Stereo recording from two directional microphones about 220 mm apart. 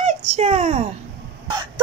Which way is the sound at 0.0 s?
30° right (ahead or behind).